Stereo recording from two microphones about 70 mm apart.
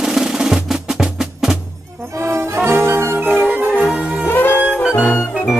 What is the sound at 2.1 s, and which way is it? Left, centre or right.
Music, right.